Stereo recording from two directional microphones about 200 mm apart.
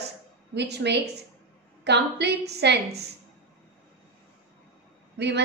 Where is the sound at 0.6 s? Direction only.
55° right (ahead or behind).